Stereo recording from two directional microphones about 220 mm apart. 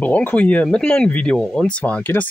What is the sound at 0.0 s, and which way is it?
Speech, 5° left (ahead or behind).